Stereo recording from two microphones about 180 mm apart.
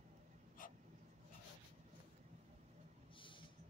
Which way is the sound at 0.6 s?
50° left (ahead or behind).